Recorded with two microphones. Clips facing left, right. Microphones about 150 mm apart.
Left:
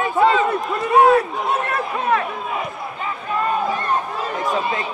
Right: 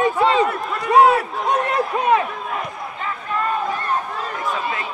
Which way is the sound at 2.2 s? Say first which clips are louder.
Left 1 dB; 5° left (ahead or behind).